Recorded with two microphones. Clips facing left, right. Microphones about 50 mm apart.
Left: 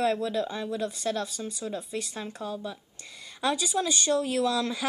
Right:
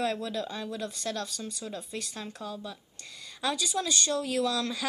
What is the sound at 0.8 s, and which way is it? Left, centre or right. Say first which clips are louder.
Speech: left 4 dB; centre.